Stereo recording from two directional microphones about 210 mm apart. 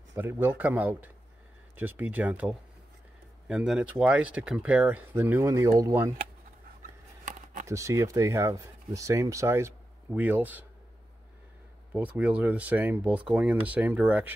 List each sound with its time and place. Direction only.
0.1 s speech: 10° right (ahead or behind)
7.2 s a sound: 35° right (ahead or behind)
7.6 s speech: 15° right (ahead or behind)
11.9 s speech: 5° right (ahead or behind)